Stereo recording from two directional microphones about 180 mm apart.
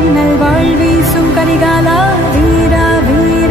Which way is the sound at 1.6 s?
Centre (ahead or behind).